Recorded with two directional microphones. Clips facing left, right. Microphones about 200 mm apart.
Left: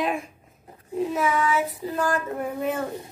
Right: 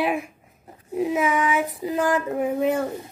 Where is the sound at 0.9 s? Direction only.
10° right (ahead or behind).